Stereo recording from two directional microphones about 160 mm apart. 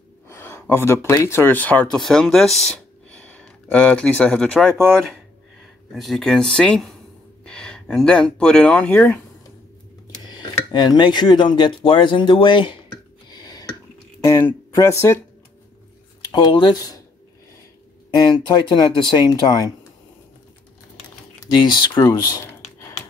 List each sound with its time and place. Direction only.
0.3 s speech: 15° left (ahead or behind)
5.9 s speech: centre (ahead or behind)
10.7 s speech: 25° left (ahead or behind)
13.3 s a sound: 25° left (ahead or behind)
14.3 s speech: 20° left (ahead or behind)
16.3 s speech: 30° left (ahead or behind)
18.2 s speech: 30° left (ahead or behind)
21.5 s speech: 30° left (ahead or behind)
22.0 s a sound: 20° left (ahead or behind)